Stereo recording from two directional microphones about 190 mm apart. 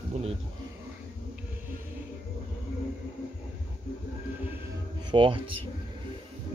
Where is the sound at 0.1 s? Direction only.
35° right (ahead or behind).